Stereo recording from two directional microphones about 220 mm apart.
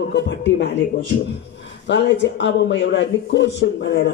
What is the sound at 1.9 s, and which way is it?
Speech, 55° left (ahead or behind).